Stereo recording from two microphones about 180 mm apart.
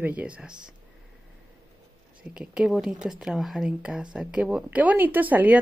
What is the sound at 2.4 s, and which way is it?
Speech, 5° right (ahead or behind).